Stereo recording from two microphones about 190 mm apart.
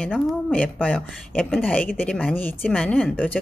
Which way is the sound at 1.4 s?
5° left (ahead or behind).